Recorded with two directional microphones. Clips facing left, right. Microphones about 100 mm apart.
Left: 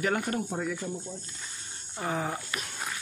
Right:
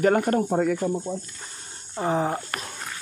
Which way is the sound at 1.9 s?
30° right (ahead or behind).